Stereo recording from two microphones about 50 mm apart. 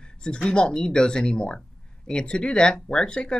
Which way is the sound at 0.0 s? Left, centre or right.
Centre.